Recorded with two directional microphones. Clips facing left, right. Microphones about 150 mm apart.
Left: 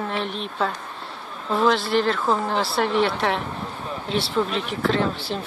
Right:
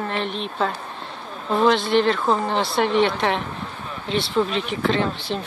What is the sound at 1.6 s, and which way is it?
Speech, 5° left (ahead or behind).